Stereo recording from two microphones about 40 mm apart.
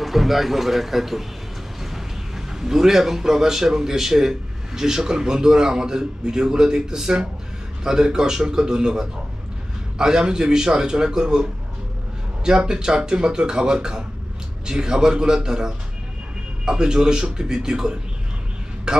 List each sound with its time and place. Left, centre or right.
0.0 s a man's voice: centre
12.4 s a man's voice: centre